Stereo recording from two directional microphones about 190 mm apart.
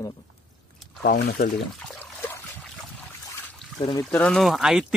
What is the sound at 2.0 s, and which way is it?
Trickle, 10° left (ahead or behind).